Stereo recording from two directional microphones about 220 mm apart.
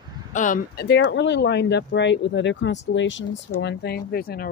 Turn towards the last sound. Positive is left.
turn(degrees=45)  # may be behind; listen again after turning